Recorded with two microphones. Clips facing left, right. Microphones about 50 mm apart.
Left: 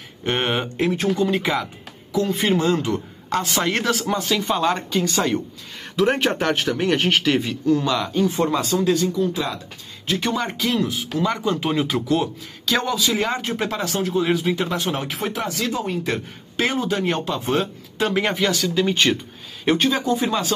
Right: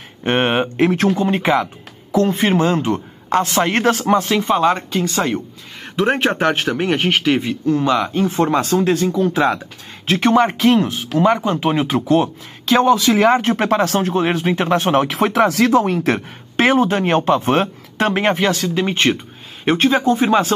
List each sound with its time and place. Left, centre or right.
0.2 s speech: right; by 7.5 s centre
7.6 s speech: right
8.8 s speech: right
9.2 s speech: right
12.9 s speech: right
15.0 s speech: right